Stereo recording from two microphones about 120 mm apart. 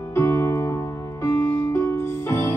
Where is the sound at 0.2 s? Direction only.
20° left (ahead or behind).